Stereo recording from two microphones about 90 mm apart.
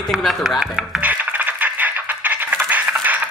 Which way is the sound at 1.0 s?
20° right (ahead or behind).